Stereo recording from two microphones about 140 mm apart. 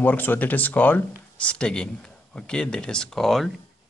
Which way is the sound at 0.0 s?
15° left (ahead or behind).